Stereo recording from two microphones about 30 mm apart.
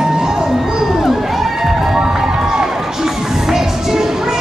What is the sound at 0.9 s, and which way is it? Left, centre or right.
Crowd, centre.